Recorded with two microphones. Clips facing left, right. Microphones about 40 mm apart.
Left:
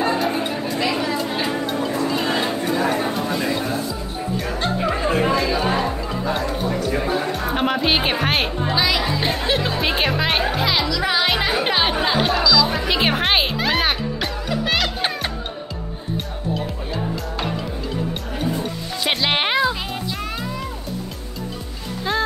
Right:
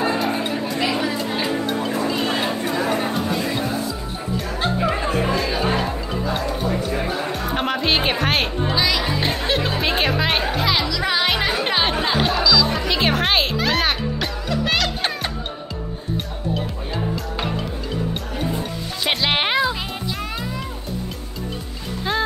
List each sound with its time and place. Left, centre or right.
0.0 s chatter: centre
1.8 s a sound: centre
2.5 s chatter: centre
2.9 s a sound: centre
4.6 s music: centre
5.3 s chatter: centre
5.8 s music: centre
19.0 s music: centre
22.1 s music: centre